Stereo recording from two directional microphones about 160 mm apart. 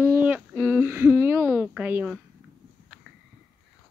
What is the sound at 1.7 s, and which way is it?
Speech, 10° right (ahead or behind).